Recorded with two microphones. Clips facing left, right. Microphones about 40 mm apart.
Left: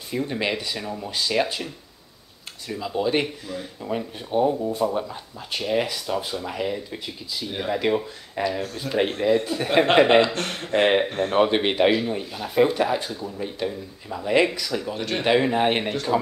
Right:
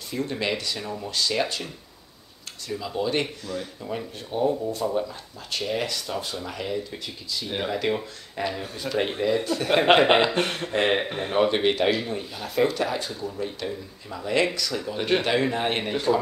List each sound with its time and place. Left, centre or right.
0.1 s speech: centre
2.7 s speech: centre
10.1 s speech: centre
10.7 s speech: centre
11.1 s speech: centre
11.3 s speech: centre
15.0 s speech: centre
15.2 s speech: centre